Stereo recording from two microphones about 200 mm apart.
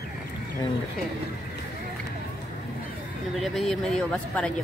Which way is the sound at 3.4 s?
Centre (ahead or behind).